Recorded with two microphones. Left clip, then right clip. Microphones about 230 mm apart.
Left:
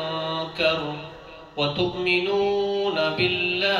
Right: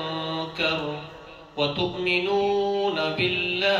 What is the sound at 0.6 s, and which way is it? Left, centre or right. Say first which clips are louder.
Mantra: left 3 dB; centre.